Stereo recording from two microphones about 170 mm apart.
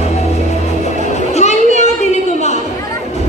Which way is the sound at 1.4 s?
45° left (ahead or behind).